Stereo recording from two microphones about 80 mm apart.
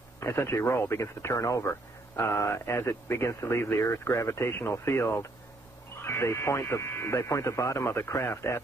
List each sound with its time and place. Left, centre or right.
0.2 s speech: left